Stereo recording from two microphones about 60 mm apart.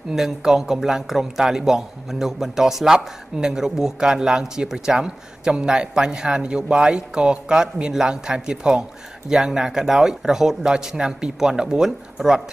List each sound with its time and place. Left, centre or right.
0.1 s a man's voice: centre